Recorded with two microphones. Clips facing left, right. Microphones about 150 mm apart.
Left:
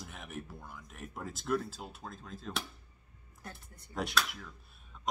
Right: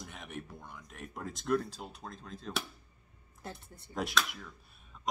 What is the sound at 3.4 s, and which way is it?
Speech, 30° right (ahead or behind).